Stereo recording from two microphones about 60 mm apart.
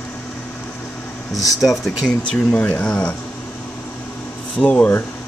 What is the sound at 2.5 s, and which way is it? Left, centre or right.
Speech, left.